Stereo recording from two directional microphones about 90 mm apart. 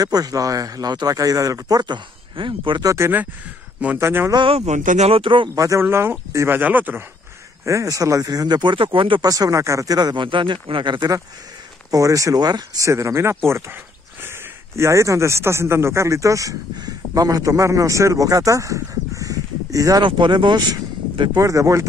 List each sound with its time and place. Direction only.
0.0 s a man's voice: 45° right (ahead or behind)
2.3 s speech: 65° right (ahead or behind)
2.8 s speech: 40° right (ahead or behind)
4.0 s speech: 25° right (ahead or behind)
5.1 s speech: 75° right (ahead or behind)
5.5 s speech: 35° right (ahead or behind)
7.6 s a man's voice: 35° right (ahead or behind); by 9.2 s 75° right (ahead or behind)
9.2 s speech: 45° right (ahead or behind)
9.9 s a man's voice: 55° right (ahead or behind)
11.0 s speech: 40° right (ahead or behind)
12.8 s speech: 30° right (ahead or behind)
14.8 s speech: 35° right (ahead or behind)
20.0 s a man's voice: 60° right (ahead or behind)
21.4 s speech: 35° right (ahead or behind)